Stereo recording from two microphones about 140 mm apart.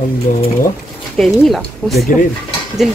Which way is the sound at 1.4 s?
Centre (ahead or behind).